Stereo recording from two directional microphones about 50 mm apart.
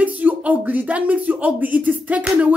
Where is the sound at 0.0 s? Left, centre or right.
Right.